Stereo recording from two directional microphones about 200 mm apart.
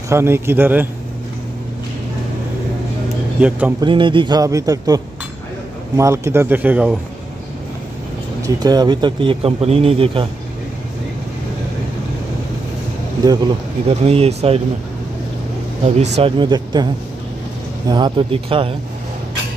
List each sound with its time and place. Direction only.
0.1 s speech: 10° right (ahead or behind)
3.3 s speech: 5° right (ahead or behind)
3.8 s a man's voice: 25° right (ahead or behind); by 7.0 s 5° right (ahead or behind)
8.5 s a man's voice: 20° right (ahead or behind)
13.2 s a man's voice: 20° right (ahead or behind)
13.8 s speech: 30° right (ahead or behind)
16.2 s a man's voice: 25° right (ahead or behind)